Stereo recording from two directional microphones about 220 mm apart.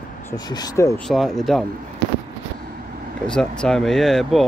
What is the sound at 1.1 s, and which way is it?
Speech, centre (ahead or behind).